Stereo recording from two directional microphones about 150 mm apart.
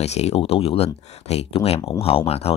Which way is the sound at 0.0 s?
45° left (ahead or behind).